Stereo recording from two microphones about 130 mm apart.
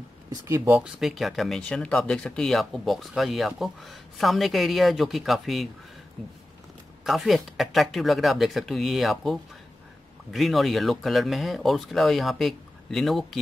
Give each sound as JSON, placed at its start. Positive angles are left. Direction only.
{"t": 0.3, "sound": "speech", "side_deg": -30}
{"t": 0.7, "sound": "speech", "side_deg": -10}
{"t": 7.1, "sound": "speech", "side_deg": 0}